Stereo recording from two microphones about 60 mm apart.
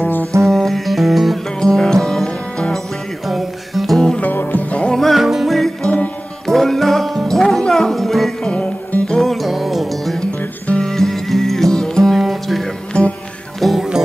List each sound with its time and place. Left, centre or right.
0.0 s music: left
0.5 s music: centre
1.6 s music: centre
3.3 s music: centre
4.2 s music: left
4.9 s music: centre
8.5 s music: left
9.2 s music: centre
10.7 s music: centre
12.9 s music: centre
13.6 s music: centre